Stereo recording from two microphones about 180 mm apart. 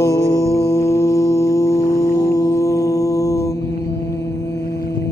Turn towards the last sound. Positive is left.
turn(degrees=15)  # may be behind; listen again after turning